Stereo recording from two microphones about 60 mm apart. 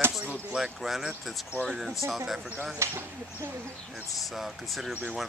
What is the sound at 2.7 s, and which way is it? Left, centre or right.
Speech, right.